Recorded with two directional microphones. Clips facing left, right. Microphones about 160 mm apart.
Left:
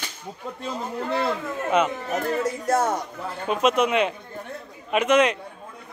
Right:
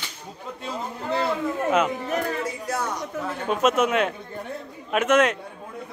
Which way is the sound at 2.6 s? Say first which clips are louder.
Left 9 dB; 50° left (ahead or behind).